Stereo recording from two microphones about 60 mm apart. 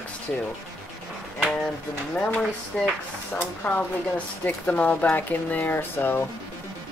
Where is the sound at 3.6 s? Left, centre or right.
Left.